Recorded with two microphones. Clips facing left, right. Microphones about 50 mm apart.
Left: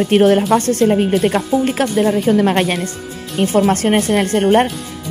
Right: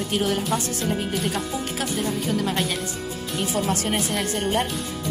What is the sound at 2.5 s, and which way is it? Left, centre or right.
Speech, left.